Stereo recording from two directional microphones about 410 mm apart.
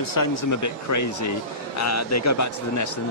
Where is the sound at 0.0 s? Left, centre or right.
Left.